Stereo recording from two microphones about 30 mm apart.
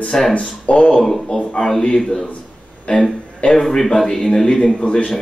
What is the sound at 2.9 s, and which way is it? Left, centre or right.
Speech, left.